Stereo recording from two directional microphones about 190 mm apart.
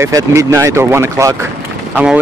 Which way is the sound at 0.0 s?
15° right (ahead or behind).